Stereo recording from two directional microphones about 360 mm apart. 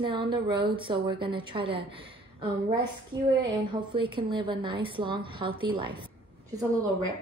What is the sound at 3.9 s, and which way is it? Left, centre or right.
Speech, centre.